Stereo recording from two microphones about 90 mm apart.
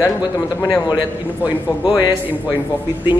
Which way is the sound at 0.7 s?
50° left (ahead or behind).